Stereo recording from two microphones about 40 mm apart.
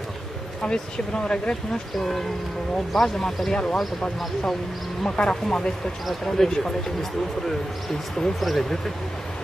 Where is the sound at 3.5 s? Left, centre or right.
Left.